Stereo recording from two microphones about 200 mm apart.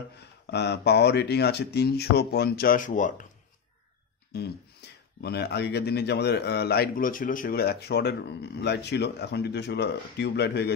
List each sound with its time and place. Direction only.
0.2 s a man's voice: 55° left (ahead or behind); by 3.3 s 40° left (ahead or behind)
4.8 s a sound: 55° left (ahead or behind)
5.2 s a man's voice: 55° left (ahead or behind)